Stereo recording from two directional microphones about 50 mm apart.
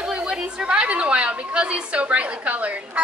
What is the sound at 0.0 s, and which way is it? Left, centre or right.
A woman's voice, centre.